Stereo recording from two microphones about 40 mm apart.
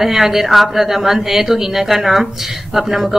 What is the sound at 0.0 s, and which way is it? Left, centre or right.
Speech, centre.